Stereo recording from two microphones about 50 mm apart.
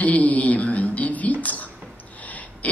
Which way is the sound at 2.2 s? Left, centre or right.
Left.